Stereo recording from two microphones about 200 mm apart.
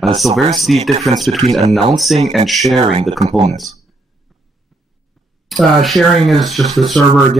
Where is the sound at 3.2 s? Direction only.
35° right (ahead or behind).